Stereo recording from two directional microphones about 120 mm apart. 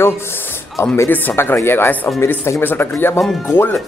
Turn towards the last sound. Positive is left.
turn(degrees=20)  # may be behind; listen again after turning